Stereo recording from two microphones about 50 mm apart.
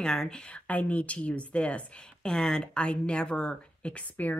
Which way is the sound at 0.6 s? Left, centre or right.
Left.